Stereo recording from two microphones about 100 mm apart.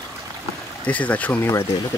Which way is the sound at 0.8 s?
15° left (ahead or behind).